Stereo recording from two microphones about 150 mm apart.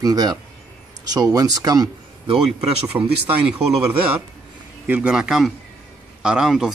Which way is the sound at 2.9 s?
20° right (ahead or behind).